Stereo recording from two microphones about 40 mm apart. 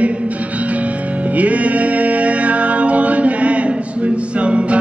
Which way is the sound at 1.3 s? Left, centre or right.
Right.